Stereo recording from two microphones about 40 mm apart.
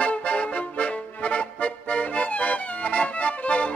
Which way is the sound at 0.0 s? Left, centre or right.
Left.